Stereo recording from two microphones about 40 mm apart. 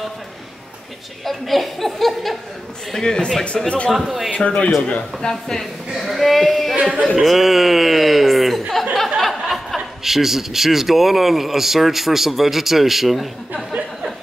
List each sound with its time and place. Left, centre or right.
1.2 s speech: centre
2.9 s speech: centre
3.5 s speech: left
3.9 s speech: centre
4.3 s speech: left
5.3 s speech: centre
7.2 s chuckle: centre
9.2 s a sound: centre
10.0 s speech: centre